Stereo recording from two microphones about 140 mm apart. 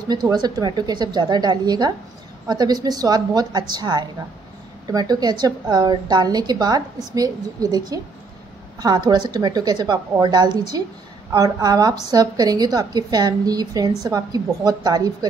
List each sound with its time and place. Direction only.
0.1 s a woman's voice: 30° right (ahead or behind)